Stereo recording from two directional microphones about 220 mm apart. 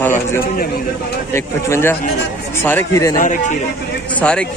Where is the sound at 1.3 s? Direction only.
10° left (ahead or behind).